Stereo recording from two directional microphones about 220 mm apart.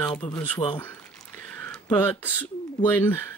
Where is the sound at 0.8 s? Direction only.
10° left (ahead or behind).